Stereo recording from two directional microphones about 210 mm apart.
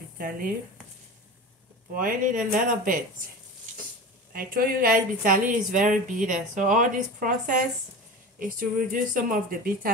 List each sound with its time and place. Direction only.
2.0 s speech: 40° right (ahead or behind)
4.3 s speech: 45° right (ahead or behind)